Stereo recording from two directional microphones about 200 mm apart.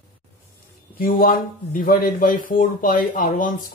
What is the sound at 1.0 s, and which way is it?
Speech, 45° left (ahead or behind).